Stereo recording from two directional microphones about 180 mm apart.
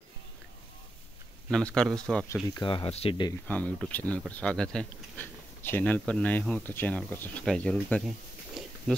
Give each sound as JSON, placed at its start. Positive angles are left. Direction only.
{"t": 1.5, "sound": "speech", "side_deg": 5}
{"t": 2.4, "sound": "speech", "side_deg": 25}
{"t": 3.4, "sound": "speech", "side_deg": 10}
{"t": 8.6, "sound": "a sound", "side_deg": 0}